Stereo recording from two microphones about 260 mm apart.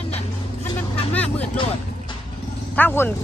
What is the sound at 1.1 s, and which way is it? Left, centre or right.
Vehicle, centre.